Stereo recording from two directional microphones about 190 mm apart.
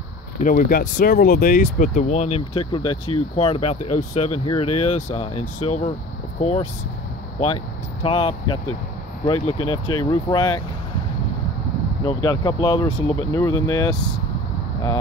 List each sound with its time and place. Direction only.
0.4 s speech: 45° left (ahead or behind); by 10.6 s 25° left (ahead or behind)
12.1 s speech: 20° left (ahead or behind)